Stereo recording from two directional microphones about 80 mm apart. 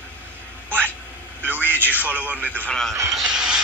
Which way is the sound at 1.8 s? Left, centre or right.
Right.